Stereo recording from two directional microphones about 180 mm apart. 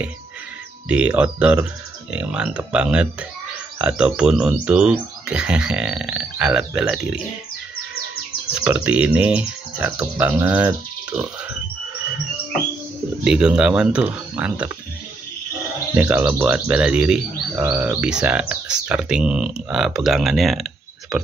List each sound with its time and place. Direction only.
0.8 s speech: 5° right (ahead or behind)
8.6 s speech: 5° right (ahead or behind)
13.2 s speech: 5° right (ahead or behind)
16.0 s speech: 10° right (ahead or behind)